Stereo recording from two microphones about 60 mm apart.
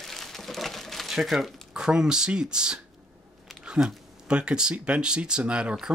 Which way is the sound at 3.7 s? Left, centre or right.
Centre.